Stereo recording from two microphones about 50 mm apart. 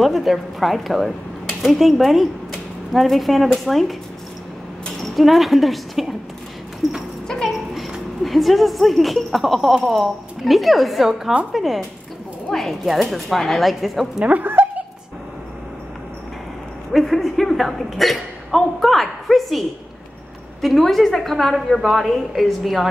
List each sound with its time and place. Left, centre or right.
0.0 s a woman's voice: centre
5.0 s a woman's voice: centre
7.2 s a sound: centre
7.5 s a woman's voice: centre
14.4 s speech: right
16.9 s a woman's voice: centre
20.6 s a woman's voice: centre